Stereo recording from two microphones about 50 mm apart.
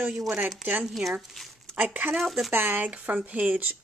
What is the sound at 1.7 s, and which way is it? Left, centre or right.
Speech, right.